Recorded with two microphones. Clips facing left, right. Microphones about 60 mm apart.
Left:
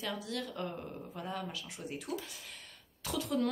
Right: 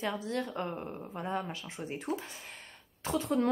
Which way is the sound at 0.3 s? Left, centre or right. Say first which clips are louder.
Right 4 dB; right.